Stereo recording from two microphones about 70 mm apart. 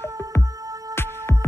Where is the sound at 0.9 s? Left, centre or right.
Left.